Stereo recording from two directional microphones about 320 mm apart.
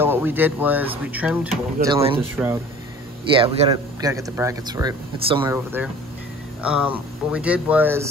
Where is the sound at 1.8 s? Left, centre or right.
Centre.